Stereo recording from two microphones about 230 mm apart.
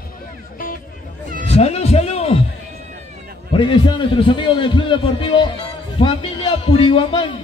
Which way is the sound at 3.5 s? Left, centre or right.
Left.